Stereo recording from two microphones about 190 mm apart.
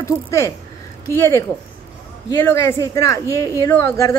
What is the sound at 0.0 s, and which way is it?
Speech, 15° left (ahead or behind).